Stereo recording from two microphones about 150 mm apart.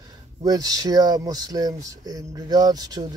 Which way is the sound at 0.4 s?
25° right (ahead or behind).